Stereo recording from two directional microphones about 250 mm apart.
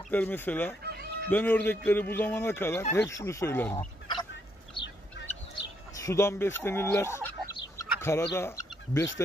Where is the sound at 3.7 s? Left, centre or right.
Centre.